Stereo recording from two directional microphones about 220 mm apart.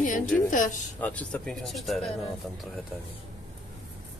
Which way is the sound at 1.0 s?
5° left (ahead or behind).